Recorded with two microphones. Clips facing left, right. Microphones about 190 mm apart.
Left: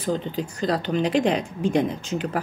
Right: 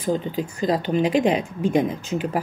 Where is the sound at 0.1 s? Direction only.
5° right (ahead or behind).